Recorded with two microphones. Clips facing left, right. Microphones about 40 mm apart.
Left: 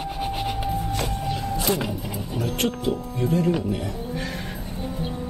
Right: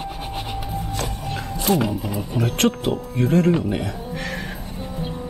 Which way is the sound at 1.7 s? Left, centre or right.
Centre.